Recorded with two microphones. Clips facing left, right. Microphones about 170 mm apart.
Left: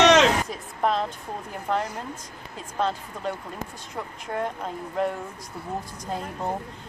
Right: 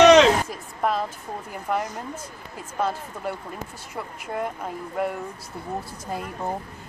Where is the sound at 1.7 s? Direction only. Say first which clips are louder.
Even; 10° right (ahead or behind).